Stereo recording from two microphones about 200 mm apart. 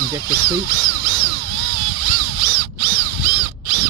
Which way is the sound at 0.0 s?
50° right (ahead or behind).